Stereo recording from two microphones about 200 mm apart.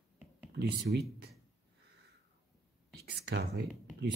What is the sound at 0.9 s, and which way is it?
Speech, 55° right (ahead or behind).